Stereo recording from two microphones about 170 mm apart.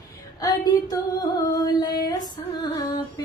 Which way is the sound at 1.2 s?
25° left (ahead or behind).